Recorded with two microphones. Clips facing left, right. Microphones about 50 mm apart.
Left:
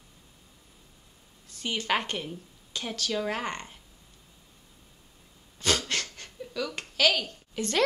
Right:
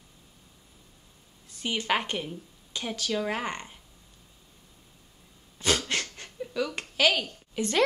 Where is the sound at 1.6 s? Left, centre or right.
Centre.